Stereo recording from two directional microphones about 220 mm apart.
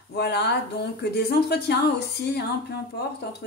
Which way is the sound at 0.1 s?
50° left (ahead or behind).